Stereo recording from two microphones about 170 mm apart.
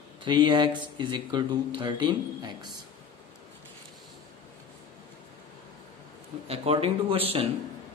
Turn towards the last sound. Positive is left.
turn(degrees=-35)  # may be behind; listen again after turning